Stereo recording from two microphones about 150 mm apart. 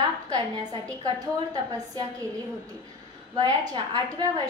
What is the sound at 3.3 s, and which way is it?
Speech, 30° right (ahead or behind).